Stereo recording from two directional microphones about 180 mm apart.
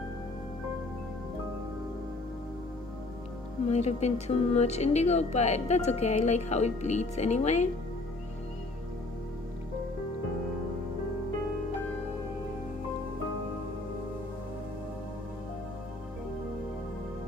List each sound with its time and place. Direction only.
3.6 s speech: 35° left (ahead or behind)